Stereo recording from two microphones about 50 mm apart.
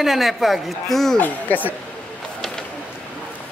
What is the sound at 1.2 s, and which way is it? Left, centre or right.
Speech, left.